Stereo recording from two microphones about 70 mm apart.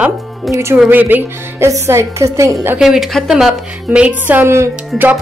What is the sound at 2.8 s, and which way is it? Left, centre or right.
Speech, centre.